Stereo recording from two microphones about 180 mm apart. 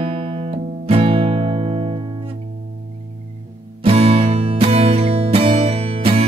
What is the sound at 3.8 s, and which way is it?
Music, 35° right (ahead or behind).